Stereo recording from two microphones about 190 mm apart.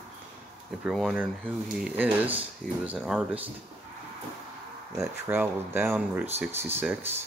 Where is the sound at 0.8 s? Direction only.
Centre (ahead or behind).